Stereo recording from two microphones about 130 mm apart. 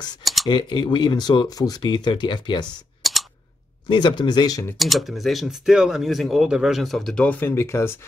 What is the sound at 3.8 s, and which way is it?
Speech, 35° left (ahead or behind).